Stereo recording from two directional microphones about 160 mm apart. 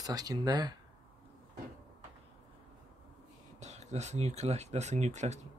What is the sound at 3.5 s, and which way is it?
Speech, 45° right (ahead or behind).